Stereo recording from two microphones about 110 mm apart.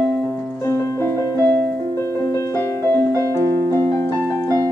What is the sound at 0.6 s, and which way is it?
Music, 25° left (ahead or behind).